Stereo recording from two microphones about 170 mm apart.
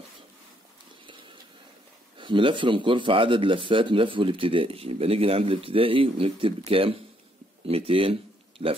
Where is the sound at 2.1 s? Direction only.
30° right (ahead or behind).